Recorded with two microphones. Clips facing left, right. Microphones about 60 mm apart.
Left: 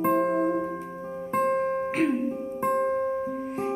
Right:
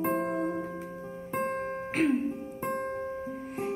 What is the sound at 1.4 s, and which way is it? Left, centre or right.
Music, centre.